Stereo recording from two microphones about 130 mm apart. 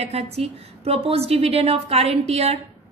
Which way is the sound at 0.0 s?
50° right (ahead or behind).